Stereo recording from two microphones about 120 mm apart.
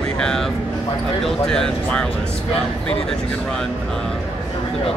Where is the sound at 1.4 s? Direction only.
5° left (ahead or behind).